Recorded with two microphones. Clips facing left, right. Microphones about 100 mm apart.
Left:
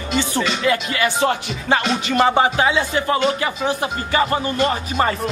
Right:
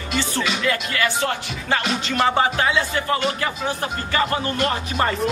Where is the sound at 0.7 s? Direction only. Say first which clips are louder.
Left 3 dB; 20° left (ahead or behind).